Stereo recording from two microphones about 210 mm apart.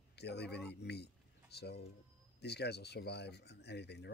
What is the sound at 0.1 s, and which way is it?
A man's voice, 50° left (ahead or behind).